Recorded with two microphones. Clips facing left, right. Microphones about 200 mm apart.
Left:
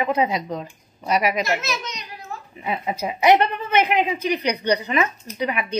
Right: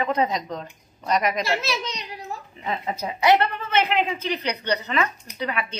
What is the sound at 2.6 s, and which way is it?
A woman's voice, 10° left (ahead or behind).